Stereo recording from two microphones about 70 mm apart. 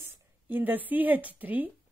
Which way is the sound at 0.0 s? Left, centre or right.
Right.